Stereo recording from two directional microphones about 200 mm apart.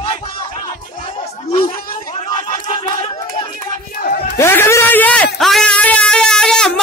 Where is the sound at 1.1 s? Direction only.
30° left (ahead or behind).